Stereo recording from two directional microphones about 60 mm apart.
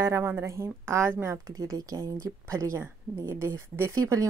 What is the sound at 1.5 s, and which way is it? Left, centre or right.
Speech, right.